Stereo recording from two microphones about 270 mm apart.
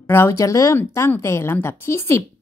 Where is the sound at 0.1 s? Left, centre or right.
Centre.